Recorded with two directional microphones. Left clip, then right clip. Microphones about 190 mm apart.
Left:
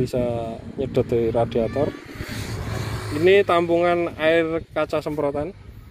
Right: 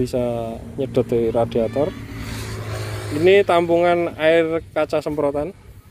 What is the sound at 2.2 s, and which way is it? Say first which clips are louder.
Vehicle: even; 60° right (ahead or behind).